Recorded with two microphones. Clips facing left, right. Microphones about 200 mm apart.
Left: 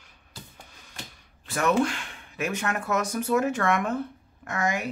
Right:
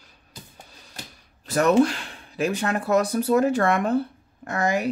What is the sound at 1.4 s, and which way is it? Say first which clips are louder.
Speech: right 6 dB; 40° right (ahead or behind).